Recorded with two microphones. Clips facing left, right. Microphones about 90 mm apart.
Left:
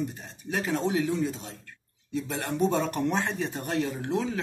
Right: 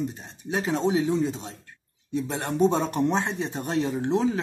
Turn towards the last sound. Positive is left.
turn(degrees=-25)  # may be behind; listen again after turning